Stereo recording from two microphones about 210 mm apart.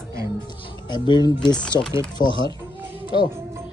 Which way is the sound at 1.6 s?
5° left (ahead or behind).